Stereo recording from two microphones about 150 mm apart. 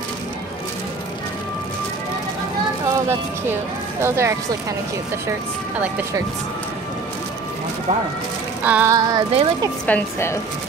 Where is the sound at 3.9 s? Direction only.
15° right (ahead or behind).